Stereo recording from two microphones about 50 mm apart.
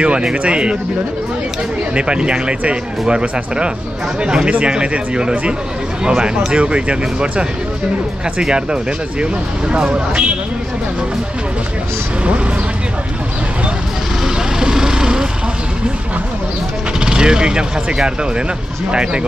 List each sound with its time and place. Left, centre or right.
0.0 s speech: right
2.0 s speech: centre
14.2 s vehicle: centre
17.0 s speech: centre